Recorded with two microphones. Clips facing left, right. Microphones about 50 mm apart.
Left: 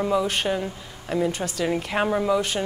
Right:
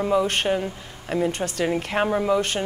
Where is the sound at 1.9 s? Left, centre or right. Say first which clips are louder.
Even; centre.